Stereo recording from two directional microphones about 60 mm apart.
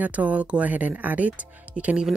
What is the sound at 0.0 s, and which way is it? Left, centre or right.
Speech, right.